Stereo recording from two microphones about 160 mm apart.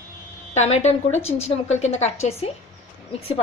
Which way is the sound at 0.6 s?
45° left (ahead or behind).